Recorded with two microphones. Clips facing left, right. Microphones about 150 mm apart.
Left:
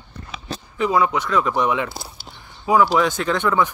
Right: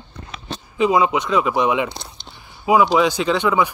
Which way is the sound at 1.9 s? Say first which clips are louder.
Left 1 dB; 5° left (ahead or behind).